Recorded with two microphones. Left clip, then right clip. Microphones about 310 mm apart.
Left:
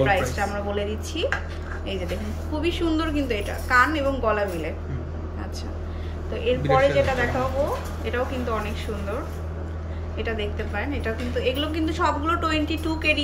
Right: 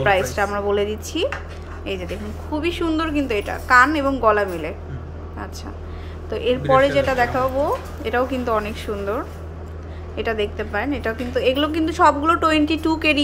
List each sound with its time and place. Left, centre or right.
0.0 s a woman's voice: centre
6.3 s a woman's voice: centre